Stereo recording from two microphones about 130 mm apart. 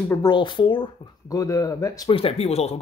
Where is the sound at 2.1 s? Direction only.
50° left (ahead or behind).